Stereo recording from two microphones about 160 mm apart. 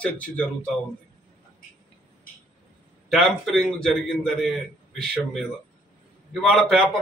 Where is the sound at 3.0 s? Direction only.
Centre (ahead or behind).